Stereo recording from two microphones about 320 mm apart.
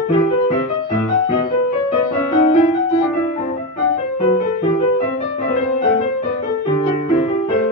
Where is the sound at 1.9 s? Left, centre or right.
Left.